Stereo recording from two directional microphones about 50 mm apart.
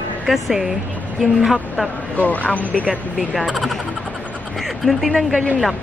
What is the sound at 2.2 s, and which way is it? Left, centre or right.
Speech, left.